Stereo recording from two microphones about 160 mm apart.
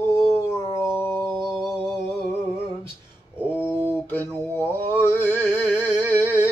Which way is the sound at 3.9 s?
10° left (ahead or behind).